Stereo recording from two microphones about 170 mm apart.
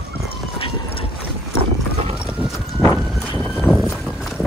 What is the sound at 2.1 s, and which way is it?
Clip-clop, 5° right (ahead or behind).